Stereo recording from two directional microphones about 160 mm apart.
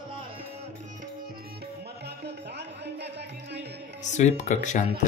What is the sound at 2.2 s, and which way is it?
Music, 90° right.